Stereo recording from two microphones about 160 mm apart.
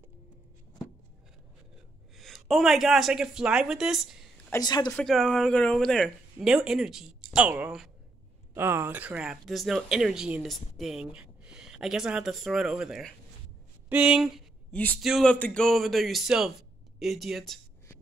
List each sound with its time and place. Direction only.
2.1 s speech: centre (ahead or behind)
4.5 s speech: 25° left (ahead or behind)
4.9 s speech: centre (ahead or behind)
8.5 s speech: 15° right (ahead or behind)
13.8 s a sound: 5° right (ahead or behind)
15.0 s speech: centre (ahead or behind)